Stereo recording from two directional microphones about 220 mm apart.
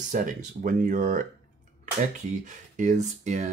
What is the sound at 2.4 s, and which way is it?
Speech, 35° right (ahead or behind).